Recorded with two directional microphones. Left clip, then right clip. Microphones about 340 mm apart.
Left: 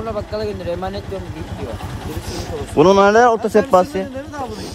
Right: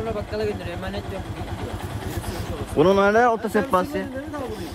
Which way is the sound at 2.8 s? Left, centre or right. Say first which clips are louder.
Left 6 dB; centre.